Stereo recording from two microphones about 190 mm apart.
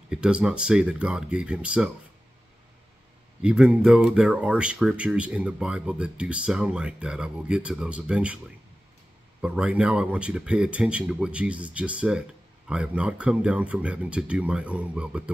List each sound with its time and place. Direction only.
0.1 s speech: 5° right (ahead or behind)
3.4 s speech: 5° right (ahead or behind)
9.4 s speech: 5° right (ahead or behind)